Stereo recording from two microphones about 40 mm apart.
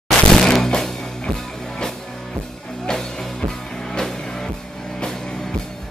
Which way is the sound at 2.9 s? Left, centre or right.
Centre.